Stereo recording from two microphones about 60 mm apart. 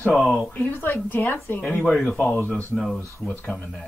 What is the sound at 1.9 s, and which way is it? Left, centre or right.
Speech, centre.